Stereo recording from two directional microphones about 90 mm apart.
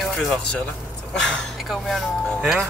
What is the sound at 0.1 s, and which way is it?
Speech, 10° left (ahead or behind).